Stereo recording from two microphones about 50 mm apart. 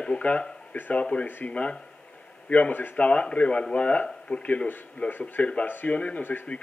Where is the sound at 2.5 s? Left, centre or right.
Left.